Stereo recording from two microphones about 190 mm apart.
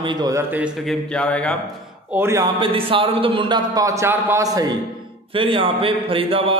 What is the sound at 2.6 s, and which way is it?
A man's voice, 30° right (ahead or behind).